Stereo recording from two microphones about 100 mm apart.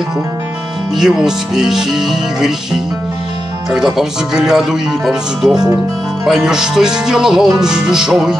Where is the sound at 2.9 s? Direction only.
5° right (ahead or behind).